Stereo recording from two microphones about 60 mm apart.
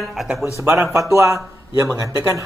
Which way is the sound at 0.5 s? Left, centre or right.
Right.